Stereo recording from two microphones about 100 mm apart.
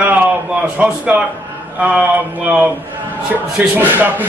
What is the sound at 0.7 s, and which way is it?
A man's voice, 15° right (ahead or behind).